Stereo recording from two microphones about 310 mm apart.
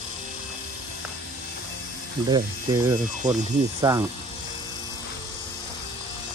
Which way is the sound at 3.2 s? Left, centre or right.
Right.